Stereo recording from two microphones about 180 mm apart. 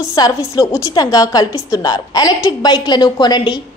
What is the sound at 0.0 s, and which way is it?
A woman's voice, 20° left (ahead or behind).